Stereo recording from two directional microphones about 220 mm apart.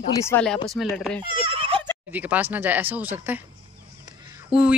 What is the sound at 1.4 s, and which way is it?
Neigh, 25° right (ahead or behind).